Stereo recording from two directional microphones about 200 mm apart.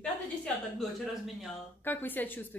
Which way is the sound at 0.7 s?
Centre (ahead or behind).